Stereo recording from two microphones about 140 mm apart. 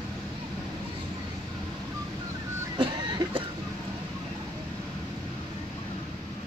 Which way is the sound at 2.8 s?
35° right (ahead or behind).